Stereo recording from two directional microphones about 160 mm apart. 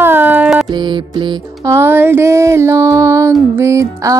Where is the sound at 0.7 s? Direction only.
30° right (ahead or behind).